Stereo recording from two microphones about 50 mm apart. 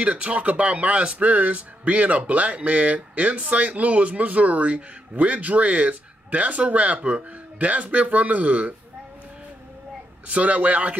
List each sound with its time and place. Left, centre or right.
0.0 s speech: right
10.2 s speech: right